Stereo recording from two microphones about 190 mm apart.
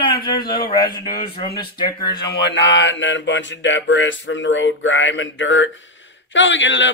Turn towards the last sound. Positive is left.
turn(degrees=75)  # may be behind; listen again after turning